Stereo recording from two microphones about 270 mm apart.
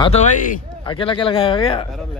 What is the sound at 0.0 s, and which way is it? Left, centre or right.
A man's voice, left.